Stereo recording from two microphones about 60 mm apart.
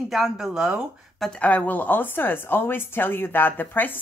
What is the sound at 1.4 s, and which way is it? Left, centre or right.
Speech, left.